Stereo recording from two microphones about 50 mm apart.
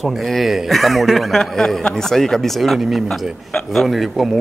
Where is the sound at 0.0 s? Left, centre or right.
Centre.